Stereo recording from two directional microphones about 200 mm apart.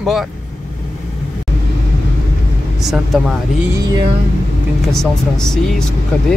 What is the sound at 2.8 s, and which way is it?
Speech, centre (ahead or behind).